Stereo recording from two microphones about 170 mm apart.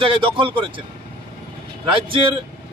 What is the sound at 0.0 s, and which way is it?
Speech, 30° right (ahead or behind).